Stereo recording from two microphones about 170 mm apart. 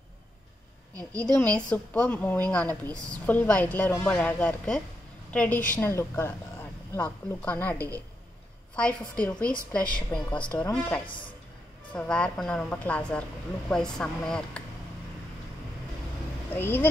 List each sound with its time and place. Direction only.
1.2 s a woman's voice: 10° left (ahead or behind)
11.1 s speech: 30° left (ahead or behind)
11.9 s a woman's voice: 10° left (ahead or behind)
16.5 s a woman's voice: 10° left (ahead or behind)